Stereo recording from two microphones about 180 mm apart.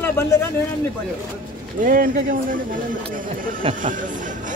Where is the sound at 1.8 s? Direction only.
50° right (ahead or behind).